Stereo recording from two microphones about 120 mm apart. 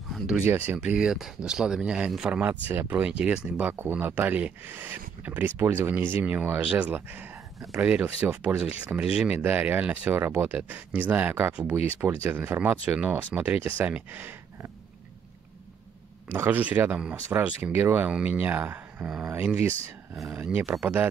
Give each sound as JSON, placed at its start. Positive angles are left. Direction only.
{"t": 0.4, "sound": "speech", "side_deg": -15}
{"t": 16.3, "sound": "speech", "side_deg": -15}